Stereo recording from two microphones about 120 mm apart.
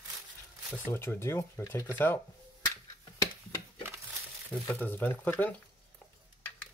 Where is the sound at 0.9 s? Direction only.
20° left (ahead or behind).